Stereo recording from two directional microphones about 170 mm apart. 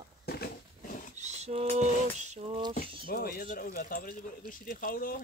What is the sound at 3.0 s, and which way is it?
Speech, 60° left (ahead or behind).